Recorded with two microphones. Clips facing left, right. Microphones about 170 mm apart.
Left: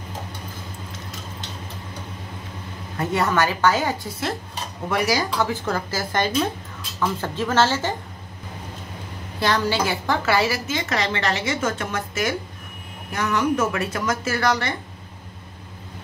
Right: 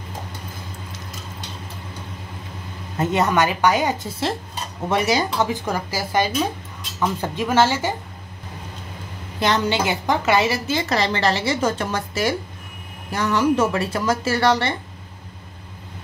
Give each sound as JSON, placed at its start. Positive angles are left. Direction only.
{"t": 3.0, "sound": "a woman's voice", "side_deg": -20}
{"t": 9.4, "sound": "a woman's voice", "side_deg": -20}
{"t": 10.7, "sound": "a woman's voice", "side_deg": -35}